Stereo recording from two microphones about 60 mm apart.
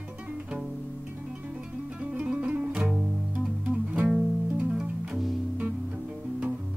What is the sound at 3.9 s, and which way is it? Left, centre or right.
Music, centre.